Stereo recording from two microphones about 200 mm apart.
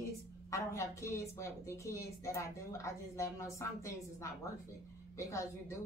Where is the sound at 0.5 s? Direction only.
15° left (ahead or behind).